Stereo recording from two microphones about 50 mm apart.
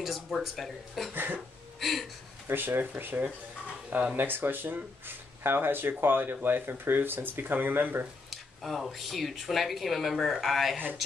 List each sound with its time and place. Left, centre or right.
0.0 s speech: centre
1.1 s speech: right
1.8 s speech: centre
2.4 s speech: right
8.3 s speech: centre